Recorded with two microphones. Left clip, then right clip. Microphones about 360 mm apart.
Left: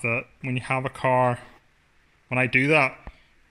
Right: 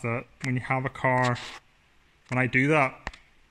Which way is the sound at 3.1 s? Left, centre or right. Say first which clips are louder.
Right 10 dB; right.